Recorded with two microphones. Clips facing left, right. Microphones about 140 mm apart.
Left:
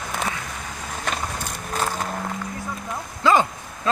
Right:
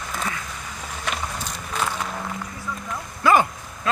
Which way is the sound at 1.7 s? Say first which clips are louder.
Left 1 dB; 40° left (ahead or behind).